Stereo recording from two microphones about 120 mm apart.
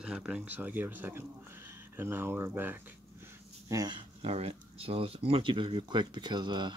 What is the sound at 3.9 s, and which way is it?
Speech, 55° right (ahead or behind).